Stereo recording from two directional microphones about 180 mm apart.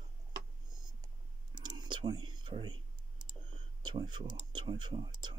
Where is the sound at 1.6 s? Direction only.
25° right (ahead or behind).